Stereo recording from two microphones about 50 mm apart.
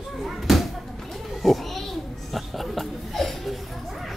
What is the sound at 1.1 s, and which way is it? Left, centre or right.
Goat, centre.